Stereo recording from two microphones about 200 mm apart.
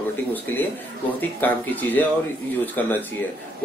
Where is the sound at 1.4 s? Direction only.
10° left (ahead or behind).